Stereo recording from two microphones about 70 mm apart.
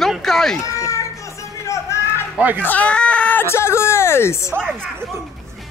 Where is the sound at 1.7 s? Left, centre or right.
Left.